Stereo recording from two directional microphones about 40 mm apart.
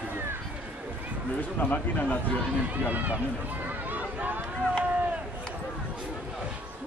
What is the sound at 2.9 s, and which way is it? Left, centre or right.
Speech, right.